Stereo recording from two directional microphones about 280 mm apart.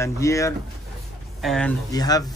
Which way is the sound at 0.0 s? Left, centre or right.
Centre.